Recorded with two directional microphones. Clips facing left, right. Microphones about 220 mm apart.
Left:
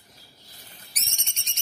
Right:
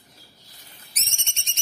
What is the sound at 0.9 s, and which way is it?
Whistle, 25° right (ahead or behind).